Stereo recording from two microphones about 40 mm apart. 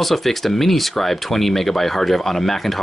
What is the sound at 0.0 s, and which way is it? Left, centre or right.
Speech, centre.